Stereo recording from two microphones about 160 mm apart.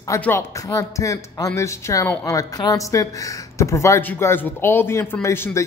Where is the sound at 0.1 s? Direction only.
15° left (ahead or behind).